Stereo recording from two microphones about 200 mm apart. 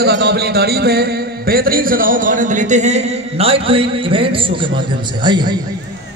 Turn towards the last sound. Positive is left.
turn(degrees=-25)  # may be behind; listen again after turning